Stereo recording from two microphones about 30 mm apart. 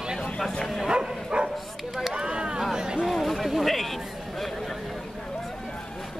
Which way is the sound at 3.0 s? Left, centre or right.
Centre.